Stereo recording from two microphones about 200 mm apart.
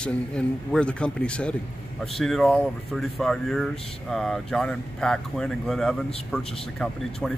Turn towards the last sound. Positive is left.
turn(degrees=0)  # may be behind; listen again after turning